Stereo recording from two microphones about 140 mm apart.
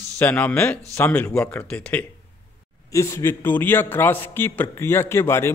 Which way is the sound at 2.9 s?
20° left (ahead or behind).